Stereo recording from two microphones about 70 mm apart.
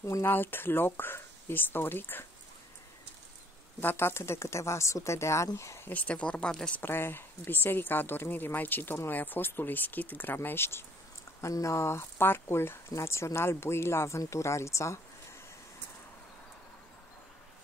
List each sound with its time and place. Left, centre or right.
0.2 s speech: left
3.8 s speech: left
5.9 s speech: centre
6.8 s speech: left
11.4 s speech: left